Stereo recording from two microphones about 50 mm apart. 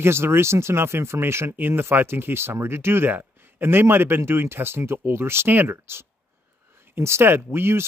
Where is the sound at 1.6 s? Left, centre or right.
Right.